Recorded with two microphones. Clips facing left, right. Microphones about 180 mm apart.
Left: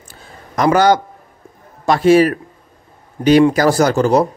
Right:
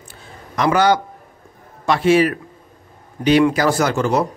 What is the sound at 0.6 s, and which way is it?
Speech, 40° left (ahead or behind).